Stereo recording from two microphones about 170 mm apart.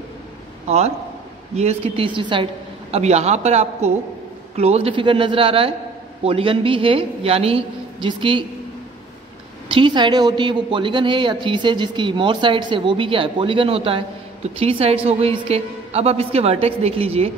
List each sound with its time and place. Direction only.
0.7 s a man's voice: 40° right (ahead or behind)
2.9 s a man's voice: 40° right (ahead or behind)
9.7 s a man's voice: 30° right (ahead or behind)